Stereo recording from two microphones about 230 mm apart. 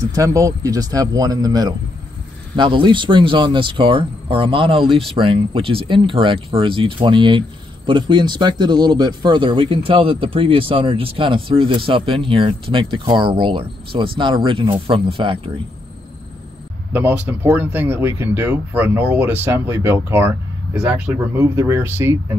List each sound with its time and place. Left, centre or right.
0.1 s speech: centre
16.9 s speech: centre